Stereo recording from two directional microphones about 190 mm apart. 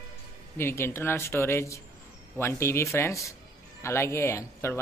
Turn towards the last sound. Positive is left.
turn(degrees=15)  # may be behind; listen again after turning